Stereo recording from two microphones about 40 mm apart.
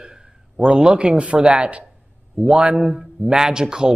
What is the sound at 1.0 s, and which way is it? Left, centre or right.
Speech, right.